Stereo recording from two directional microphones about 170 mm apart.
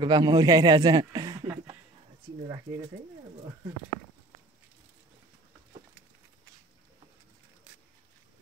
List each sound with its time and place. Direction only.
0.0 s speech: 25° right (ahead or behind)